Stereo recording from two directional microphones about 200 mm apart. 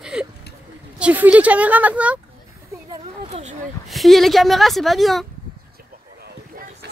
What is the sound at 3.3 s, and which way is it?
Speech, 35° right (ahead or behind).